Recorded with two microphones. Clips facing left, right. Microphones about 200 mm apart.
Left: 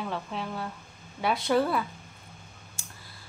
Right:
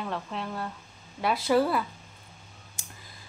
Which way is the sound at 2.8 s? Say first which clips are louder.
Even; 20° right (ahead or behind).